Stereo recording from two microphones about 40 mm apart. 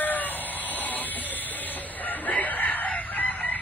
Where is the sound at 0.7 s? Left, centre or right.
Left.